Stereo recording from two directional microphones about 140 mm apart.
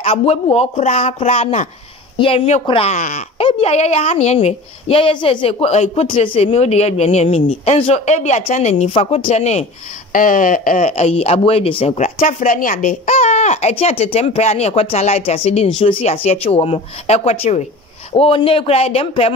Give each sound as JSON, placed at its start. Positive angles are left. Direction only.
{"t": 0.0, "sound": "speech", "side_deg": 45}
{"t": 2.9, "sound": "speech", "side_deg": 55}
{"t": 6.0, "sound": "speech", "side_deg": 40}
{"t": 10.1, "sound": "speech", "side_deg": 75}
{"t": 12.2, "sound": "speech", "side_deg": 75}
{"t": 18.1, "sound": "speech", "side_deg": 40}